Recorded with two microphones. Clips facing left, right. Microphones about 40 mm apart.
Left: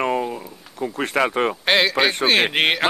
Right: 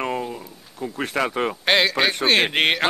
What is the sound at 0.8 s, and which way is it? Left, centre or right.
Speech, left.